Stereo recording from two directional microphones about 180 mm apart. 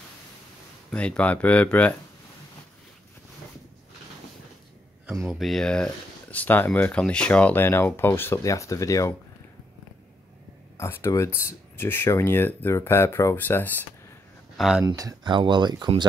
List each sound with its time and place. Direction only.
0.8 s speech: 5° left (ahead or behind)
5.3 s speech: centre (ahead or behind); by 9.1 s 20° left (ahead or behind)
10.8 s speech: 15° left (ahead or behind)
14.6 s speech: centre (ahead or behind)
14.9 s speech: 20° right (ahead or behind)